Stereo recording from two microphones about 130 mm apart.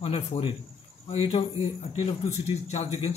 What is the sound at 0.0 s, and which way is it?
Speech, 45° left (ahead or behind).